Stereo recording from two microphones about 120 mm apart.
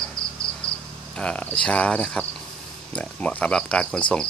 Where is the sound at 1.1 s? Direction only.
10° left (ahead or behind).